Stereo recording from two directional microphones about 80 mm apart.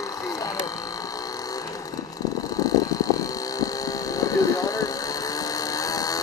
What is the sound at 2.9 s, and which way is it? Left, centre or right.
Vehicle, left.